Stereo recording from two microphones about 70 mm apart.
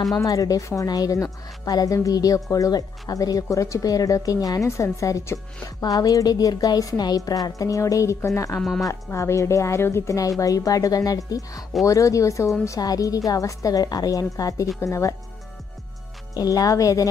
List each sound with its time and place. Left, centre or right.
0.2 s speech: left
0.8 s speech: left
1.1 s speech: left
1.7 s a woman's voice: left
4.6 s a woman's voice: left
5.0 s a woman's voice: left
8.5 s speech: centre
8.8 s speech: left
10.4 s a woman's voice: left
12.6 s a woman's voice: left
16.3 s a woman's voice: left